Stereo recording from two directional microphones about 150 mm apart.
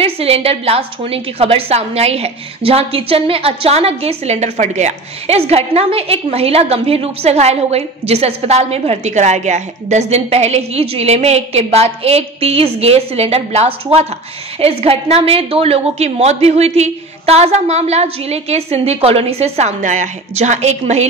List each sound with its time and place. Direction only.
0.0 s a woman's voice: 40° right (ahead or behind)